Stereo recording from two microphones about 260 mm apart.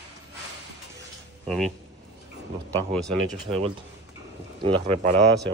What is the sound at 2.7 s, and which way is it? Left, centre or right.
Speech, centre.